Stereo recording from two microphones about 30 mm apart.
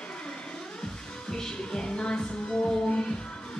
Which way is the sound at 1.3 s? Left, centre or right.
Left.